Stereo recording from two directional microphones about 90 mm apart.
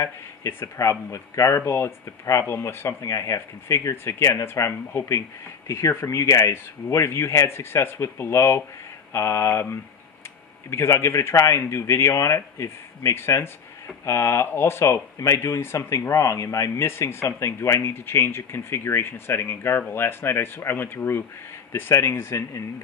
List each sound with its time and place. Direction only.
0.0 s speech: 30° left (ahead or behind)